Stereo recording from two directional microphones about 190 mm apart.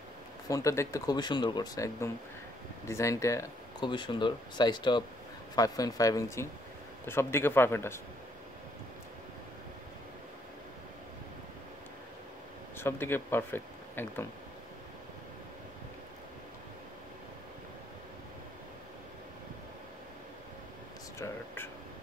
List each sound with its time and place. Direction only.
0.5 s speech: 15° left (ahead or behind)
12.7 s speech: 10° left (ahead or behind)